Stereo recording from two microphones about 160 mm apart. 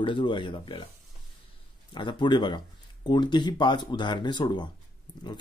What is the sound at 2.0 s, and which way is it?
Speech, 30° left (ahead or behind).